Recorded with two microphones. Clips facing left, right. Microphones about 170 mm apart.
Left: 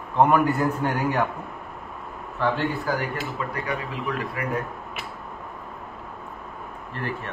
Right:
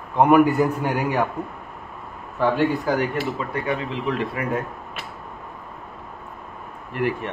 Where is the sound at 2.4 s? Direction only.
15° right (ahead or behind).